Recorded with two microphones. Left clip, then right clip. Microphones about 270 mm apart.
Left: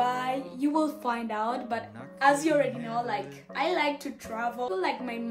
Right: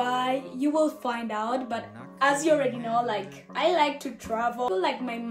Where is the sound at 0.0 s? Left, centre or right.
Centre.